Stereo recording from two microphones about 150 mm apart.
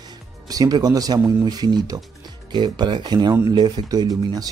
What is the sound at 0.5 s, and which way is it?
Speech, 25° right (ahead or behind).